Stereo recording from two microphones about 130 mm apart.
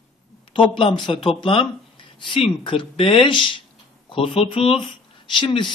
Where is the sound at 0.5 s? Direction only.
45° left (ahead or behind).